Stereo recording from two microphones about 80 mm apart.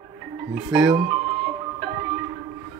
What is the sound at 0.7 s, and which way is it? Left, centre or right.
Music, centre.